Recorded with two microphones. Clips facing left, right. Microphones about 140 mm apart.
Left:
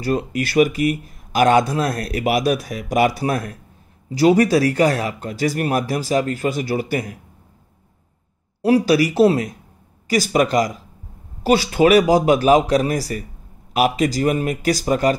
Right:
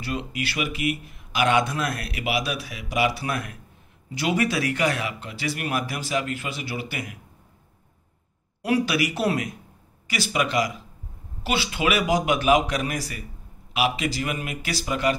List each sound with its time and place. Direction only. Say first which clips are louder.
0.0 s speech: left 8 dB; 40° left (ahead or behind)
8.6 s speech: left 8 dB; 35° left (ahead or behind)
10.0 s speech: left 8 dB; 40° left (ahead or behind)